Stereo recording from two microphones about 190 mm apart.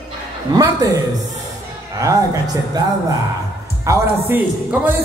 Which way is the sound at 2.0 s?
20° right (ahead or behind).